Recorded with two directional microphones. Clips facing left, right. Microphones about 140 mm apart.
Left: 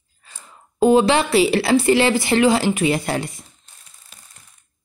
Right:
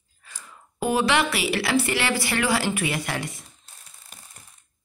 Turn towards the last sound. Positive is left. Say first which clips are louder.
# left 8 dB
turn(degrees=30)  # may be behind; listen again after turning